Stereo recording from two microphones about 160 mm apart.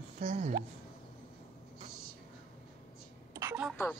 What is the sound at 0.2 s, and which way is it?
Speech, 45° right (ahead or behind).